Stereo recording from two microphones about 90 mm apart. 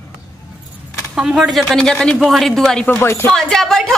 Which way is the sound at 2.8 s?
25° left (ahead or behind).